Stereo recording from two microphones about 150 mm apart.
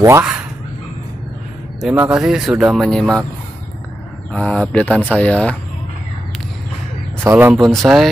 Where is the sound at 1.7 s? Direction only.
10° right (ahead or behind).